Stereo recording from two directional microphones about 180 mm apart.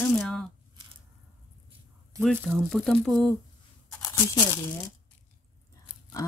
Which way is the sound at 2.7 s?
Centre (ahead or behind).